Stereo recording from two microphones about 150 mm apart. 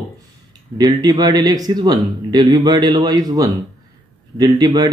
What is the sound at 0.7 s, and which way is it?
Speech, 25° right (ahead or behind).